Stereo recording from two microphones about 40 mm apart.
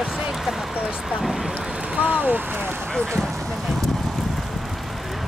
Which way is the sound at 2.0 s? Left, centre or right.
Right.